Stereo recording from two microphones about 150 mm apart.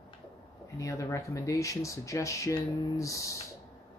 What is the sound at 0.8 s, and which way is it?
Speech, 20° left (ahead or behind).